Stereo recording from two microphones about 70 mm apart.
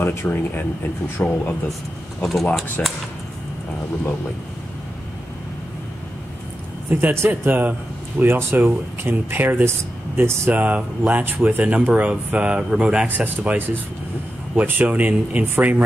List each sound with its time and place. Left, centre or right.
0.0 s speech: left
0.3 s speech: left
2.8 s speech: centre
6.9 s speech: right
10.5 s speech: right